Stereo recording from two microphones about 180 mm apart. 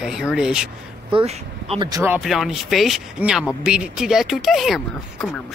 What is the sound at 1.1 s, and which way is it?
Speech, 30° right (ahead or behind).